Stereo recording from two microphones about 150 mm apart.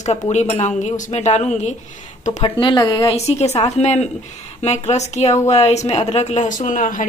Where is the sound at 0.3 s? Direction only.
50° left (ahead or behind).